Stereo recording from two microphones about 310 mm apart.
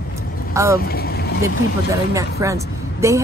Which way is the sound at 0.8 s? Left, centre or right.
Left.